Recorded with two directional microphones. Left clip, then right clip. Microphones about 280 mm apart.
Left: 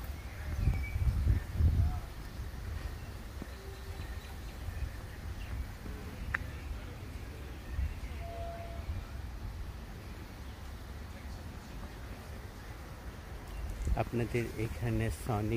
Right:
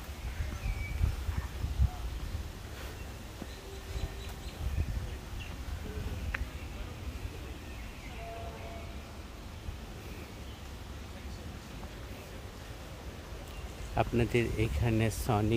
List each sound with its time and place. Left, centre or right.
13.9 s speech: centre